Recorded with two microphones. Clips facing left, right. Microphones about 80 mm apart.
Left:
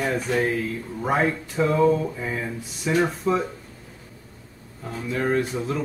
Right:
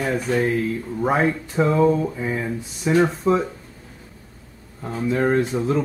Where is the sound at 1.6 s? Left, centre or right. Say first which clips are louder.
Right 2 dB; right.